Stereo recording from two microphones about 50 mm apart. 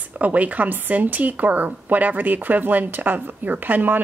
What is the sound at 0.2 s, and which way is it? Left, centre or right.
A woman's voice, right.